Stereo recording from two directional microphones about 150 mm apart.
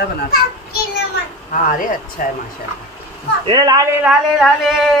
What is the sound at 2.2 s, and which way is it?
Speech, 65° left (ahead or behind).